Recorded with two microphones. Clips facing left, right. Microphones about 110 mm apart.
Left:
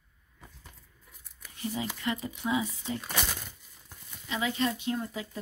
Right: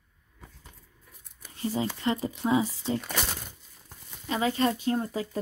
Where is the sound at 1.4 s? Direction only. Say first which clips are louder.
Right 5 dB; 35° right (ahead or behind).